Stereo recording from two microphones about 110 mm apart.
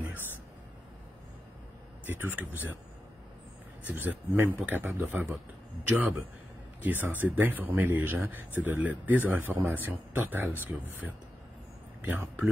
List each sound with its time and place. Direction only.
2.0 s speech: 15° right (ahead or behind)
3.9 s a man's voice: 15° right (ahead or behind)